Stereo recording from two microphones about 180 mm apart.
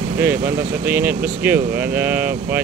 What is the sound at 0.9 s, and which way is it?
Speech, 10° right (ahead or behind).